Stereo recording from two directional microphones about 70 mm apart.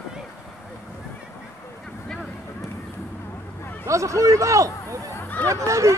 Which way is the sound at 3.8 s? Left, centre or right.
Right.